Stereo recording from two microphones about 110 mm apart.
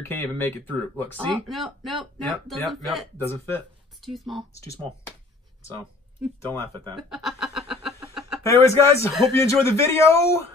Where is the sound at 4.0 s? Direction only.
Centre (ahead or behind).